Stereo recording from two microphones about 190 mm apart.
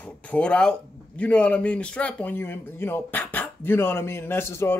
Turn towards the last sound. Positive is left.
turn(degrees=15)  # may be behind; listen again after turning